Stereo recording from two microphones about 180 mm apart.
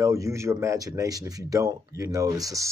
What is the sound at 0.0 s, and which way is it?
Speech, 15° right (ahead or behind).